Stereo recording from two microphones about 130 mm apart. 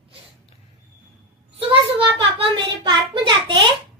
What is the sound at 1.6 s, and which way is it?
A child's voice, 40° right (ahead or behind).